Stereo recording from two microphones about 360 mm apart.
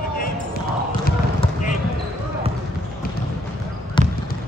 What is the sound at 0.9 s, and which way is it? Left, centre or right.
Basketball bounce, left.